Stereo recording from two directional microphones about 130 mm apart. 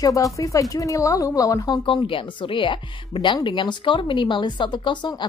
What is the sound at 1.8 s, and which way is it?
Speech, 40° left (ahead or behind).